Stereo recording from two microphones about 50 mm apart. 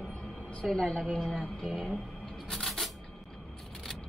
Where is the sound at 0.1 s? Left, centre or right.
Left.